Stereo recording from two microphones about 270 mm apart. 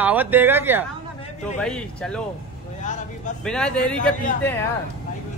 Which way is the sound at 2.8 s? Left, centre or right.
Left.